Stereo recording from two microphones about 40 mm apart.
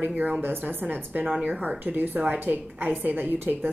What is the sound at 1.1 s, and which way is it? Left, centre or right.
A woman's voice, right.